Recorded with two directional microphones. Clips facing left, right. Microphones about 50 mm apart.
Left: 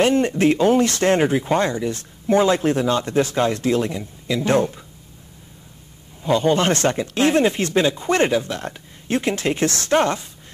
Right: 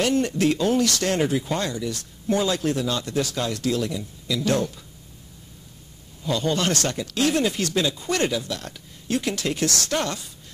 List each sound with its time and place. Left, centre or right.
0.0 s speech: left
6.2 s speech: left